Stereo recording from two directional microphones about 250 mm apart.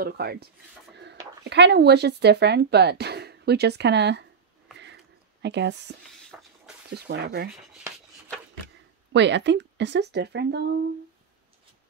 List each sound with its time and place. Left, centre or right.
0.0 s speech: right
5.4 s speech: right
6.3 s a sound: centre
6.9 s speech: right
9.1 s speech: right